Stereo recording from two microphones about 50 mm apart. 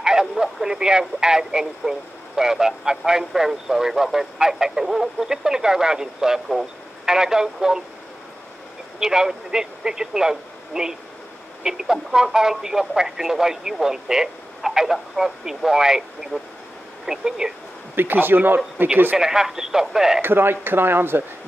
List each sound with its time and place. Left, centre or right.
0.0 s speech: centre
9.0 s speech: centre
16.3 s speech: left
17.0 s speech: centre
17.9 s speech: right
19.1 s speech: centre
20.2 s speech: right